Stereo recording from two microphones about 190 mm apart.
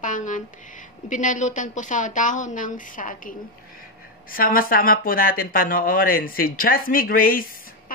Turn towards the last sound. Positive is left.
turn(degrees=50)  # may be behind; listen again after turning